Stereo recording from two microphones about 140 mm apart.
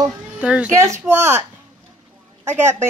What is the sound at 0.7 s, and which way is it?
Speech, 20° right (ahead or behind).